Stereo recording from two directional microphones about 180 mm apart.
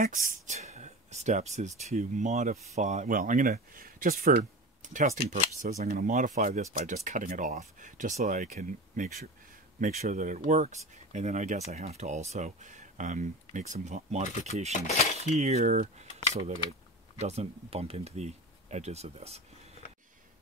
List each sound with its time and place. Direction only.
0.0 s speech: 50° right (ahead or behind)
14.7 s speech: 35° left (ahead or behind)
15.1 s speech: 35° right (ahead or behind)
17.2 s speech: 35° right (ahead or behind)